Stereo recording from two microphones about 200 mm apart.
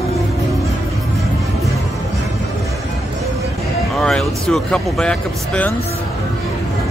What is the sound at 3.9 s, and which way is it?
Speech, 5° left (ahead or behind).